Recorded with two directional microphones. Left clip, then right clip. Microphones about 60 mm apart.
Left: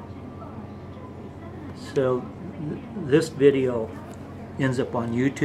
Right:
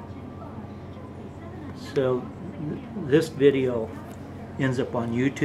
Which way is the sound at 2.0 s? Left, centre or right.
Centre.